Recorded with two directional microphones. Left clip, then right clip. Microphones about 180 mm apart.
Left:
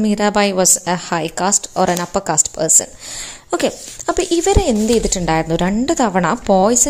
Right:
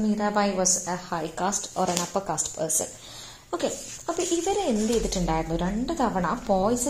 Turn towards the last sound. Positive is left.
turn(degrees=45)  # may be behind; listen again after turning